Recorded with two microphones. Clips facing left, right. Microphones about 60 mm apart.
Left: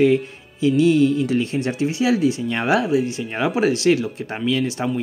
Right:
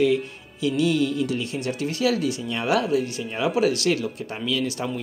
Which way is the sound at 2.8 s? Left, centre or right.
Left.